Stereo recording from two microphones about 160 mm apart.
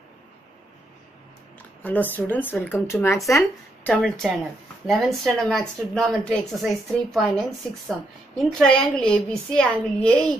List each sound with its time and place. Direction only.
1.8 s speech: 10° left (ahead or behind)
3.9 s speech: centre (ahead or behind)